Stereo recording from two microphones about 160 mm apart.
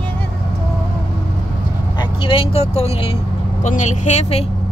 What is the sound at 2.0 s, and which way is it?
Vehicle, 30° left (ahead or behind).